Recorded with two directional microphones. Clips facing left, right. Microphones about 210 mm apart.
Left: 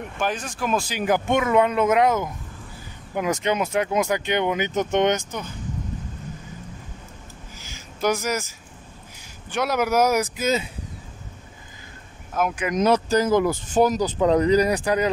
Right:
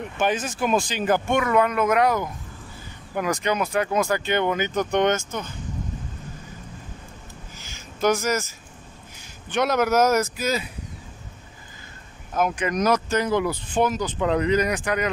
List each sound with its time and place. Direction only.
0.2 s speech: centre (ahead or behind); by 5.5 s 15° left (ahead or behind)
7.6 s a sound: 10° left (ahead or behind)
9.5 s speech: 10° left (ahead or behind)
12.4 s speech: 5° left (ahead or behind)
12.7 s speech: 30° left (ahead or behind)